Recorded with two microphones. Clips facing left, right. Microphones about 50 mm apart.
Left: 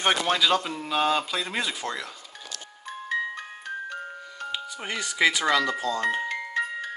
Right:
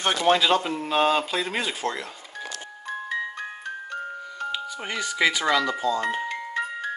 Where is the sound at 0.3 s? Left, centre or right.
Right.